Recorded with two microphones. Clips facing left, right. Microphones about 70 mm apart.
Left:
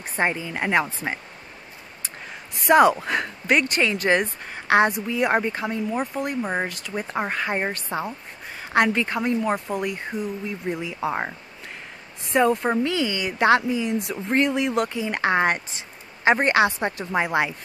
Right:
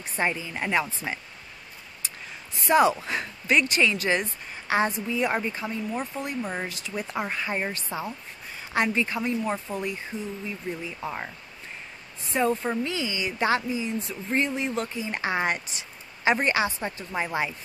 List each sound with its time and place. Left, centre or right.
0.0 s a woman's voice: left
9.8 s speech: left
12.3 s speech: left